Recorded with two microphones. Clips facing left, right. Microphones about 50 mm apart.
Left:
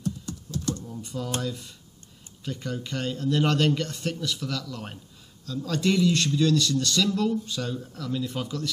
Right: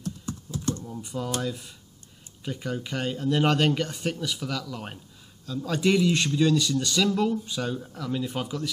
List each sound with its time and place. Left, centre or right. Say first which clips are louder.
0.3 s typing: right 2 dB; right
0.8 s speech: right 1 dB; centre